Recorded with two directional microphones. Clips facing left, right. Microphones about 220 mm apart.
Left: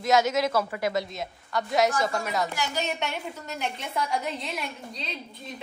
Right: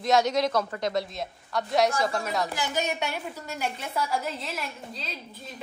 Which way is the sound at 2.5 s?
15° right (ahead or behind).